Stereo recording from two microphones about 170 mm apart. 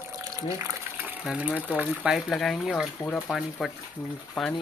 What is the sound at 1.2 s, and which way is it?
Speech, 5° right (ahead or behind).